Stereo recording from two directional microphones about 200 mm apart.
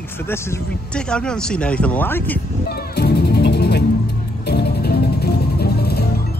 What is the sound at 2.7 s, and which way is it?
Music, 55° left (ahead or behind).